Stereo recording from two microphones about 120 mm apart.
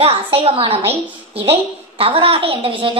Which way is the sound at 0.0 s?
55° right (ahead or behind).